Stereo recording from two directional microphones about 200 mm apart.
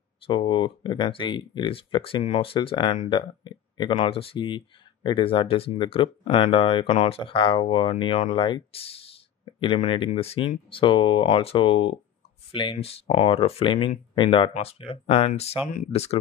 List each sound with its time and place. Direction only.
0.3 s speech: 25° left (ahead or behind)